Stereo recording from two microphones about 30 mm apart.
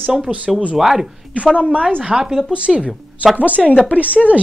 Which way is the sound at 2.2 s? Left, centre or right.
Centre.